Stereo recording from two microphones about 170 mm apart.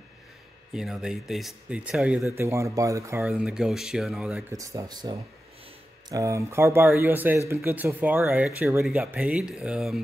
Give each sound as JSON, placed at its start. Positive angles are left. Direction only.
{"t": 0.7, "sound": "speech", "side_deg": -5}
{"t": 4.5, "sound": "speech", "side_deg": -20}